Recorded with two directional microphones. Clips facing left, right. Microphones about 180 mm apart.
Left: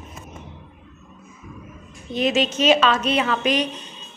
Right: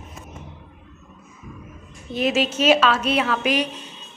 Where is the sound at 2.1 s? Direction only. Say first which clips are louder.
Left 1 dB; 5° right (ahead or behind).